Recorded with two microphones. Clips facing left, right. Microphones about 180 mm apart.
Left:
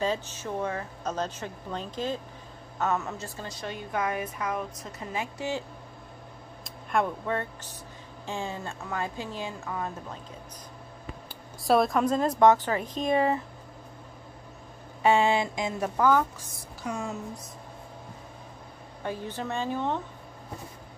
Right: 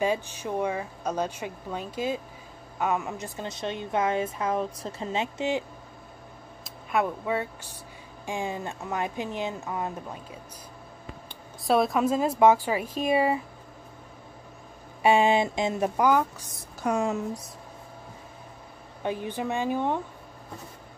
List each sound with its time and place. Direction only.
0.0 s a woman's voice: 15° right (ahead or behind)
6.6 s speech: 5° right (ahead or behind)
11.2 s speech: centre (ahead or behind)
15.0 s speech: 15° right (ahead or behind)
16.8 s speech: 75° right (ahead or behind)
19.0 s speech: 15° right (ahead or behind)